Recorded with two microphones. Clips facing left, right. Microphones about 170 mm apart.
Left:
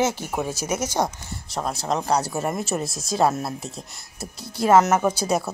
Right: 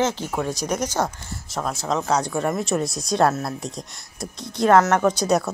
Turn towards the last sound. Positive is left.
turn(degrees=5)  # may be behind; listen again after turning